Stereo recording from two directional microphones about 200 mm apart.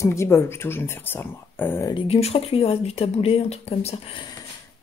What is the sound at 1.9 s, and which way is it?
Speech, 30° left (ahead or behind).